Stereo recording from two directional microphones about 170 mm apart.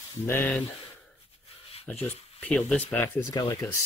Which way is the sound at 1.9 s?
10° left (ahead or behind).